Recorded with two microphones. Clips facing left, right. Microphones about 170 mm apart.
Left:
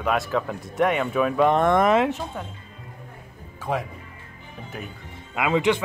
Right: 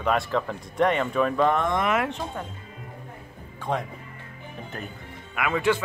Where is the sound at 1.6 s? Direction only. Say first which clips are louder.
Left 6 dB; 55° left (ahead or behind).